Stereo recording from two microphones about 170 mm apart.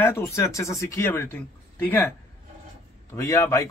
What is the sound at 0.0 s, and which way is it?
Speech, 15° left (ahead or behind).